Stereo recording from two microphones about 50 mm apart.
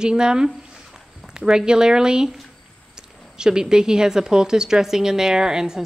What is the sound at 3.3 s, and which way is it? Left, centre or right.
A woman's voice, centre.